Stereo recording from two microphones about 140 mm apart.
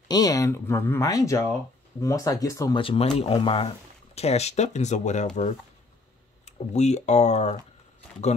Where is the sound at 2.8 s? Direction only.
45° left (ahead or behind).